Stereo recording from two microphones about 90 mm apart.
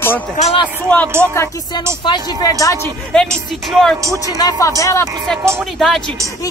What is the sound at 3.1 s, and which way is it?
Speech, 5° left (ahead or behind).